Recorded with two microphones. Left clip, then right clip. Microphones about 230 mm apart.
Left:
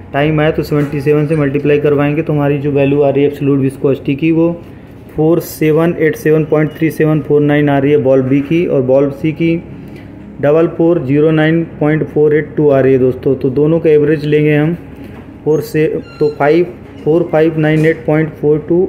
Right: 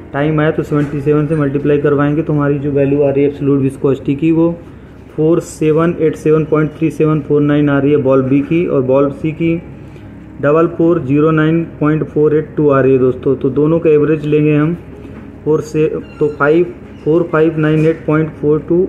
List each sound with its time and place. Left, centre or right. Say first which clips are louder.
0.1 s speech: left 2 dB; centre
2.6 s a man's voice: left 2 dB; centre
3.3 s speech: even; centre